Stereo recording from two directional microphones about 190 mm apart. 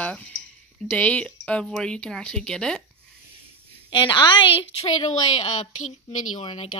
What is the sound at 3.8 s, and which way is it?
A woman's voice, 25° left (ahead or behind).